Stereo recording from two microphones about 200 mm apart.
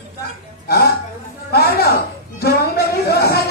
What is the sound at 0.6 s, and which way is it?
Music, 50° left (ahead or behind).